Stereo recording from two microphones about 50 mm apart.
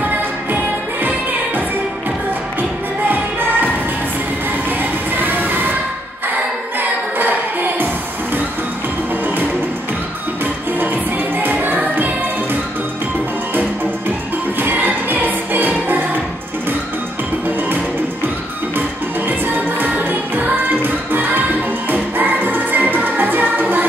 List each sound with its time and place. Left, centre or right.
3.1 s music: right
6.8 s music: right
14.6 s music: right
19.2 s music: right